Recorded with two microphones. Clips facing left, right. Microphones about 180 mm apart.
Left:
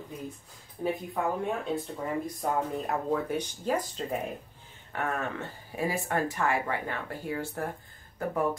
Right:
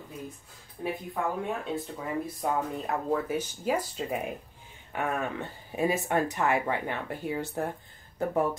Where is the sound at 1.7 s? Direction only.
Centre (ahead or behind).